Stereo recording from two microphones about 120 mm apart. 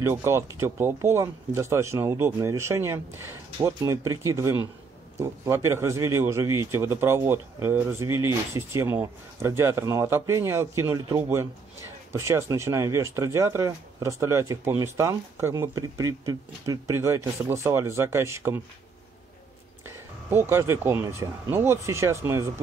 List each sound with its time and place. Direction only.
0.0 s speech: 20° right (ahead or behind)
20.2 s speech: 20° right (ahead or behind)